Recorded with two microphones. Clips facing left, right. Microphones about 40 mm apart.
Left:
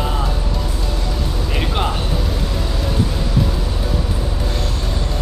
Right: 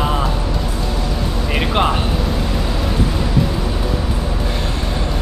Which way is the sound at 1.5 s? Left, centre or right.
Right.